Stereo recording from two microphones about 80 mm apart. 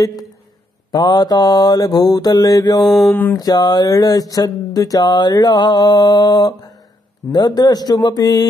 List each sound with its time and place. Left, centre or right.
0.9 s mantra: left
3.1 s mantra: left
3.3 s mantra: left
5.0 s mantra: left
7.3 s speech: left